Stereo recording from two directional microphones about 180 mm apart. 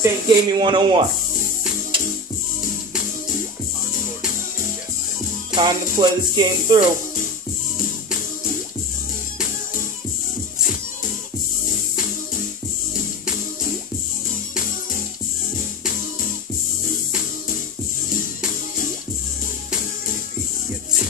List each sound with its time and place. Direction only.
0.0 s music: 20° right (ahead or behind)
5.5 s music: 25° right (ahead or behind)